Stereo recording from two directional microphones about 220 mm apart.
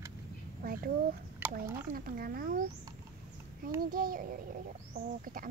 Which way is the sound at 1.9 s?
40° right (ahead or behind).